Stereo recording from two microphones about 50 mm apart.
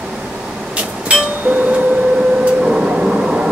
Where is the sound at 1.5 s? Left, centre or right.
Centre.